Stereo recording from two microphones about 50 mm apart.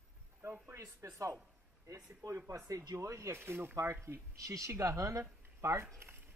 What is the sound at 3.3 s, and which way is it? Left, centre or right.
Speech, right.